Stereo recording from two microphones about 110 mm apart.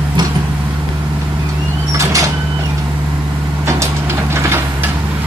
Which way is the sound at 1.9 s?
30° right (ahead or behind).